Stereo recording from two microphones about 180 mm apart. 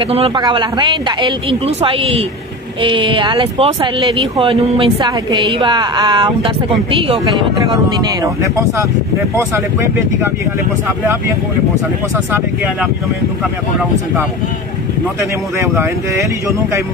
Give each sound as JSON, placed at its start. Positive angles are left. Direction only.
{"t": 0.0, "sound": "speech", "side_deg": -30}
{"t": 7.6, "sound": "speech", "side_deg": -25}
{"t": 15.6, "sound": "speech", "side_deg": -15}